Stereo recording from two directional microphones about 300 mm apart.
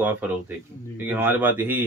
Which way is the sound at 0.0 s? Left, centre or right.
Centre.